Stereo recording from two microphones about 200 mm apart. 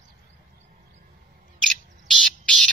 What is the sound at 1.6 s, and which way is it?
Bird, 5° left (ahead or behind).